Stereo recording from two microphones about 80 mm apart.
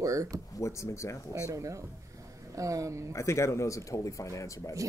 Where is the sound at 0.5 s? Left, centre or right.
Left.